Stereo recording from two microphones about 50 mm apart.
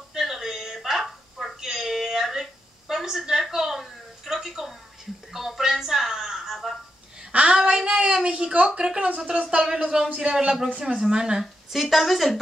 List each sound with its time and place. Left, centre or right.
0.1 s a sound: centre
9.1 s speech: right
11.7 s speech: centre